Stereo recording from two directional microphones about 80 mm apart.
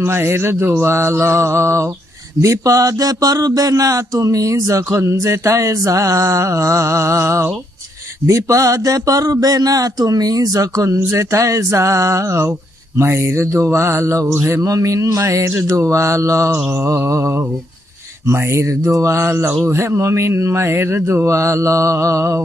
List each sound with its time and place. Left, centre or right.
0.0 s speech: right
18.2 s speech: right